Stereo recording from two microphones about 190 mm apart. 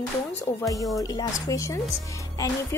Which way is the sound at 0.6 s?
15° left (ahead or behind).